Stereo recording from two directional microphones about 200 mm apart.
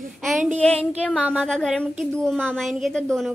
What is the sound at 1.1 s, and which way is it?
A woman's voice, 5° right (ahead or behind).